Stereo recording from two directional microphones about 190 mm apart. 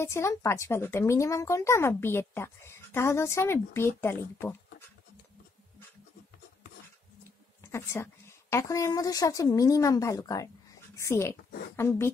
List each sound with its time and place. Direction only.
0.0 s speech: 15° left (ahead or behind)
7.6 s speech: 15° left (ahead or behind)